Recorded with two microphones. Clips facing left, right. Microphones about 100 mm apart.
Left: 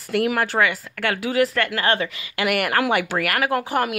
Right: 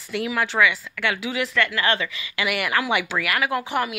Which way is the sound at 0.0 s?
55° left (ahead or behind).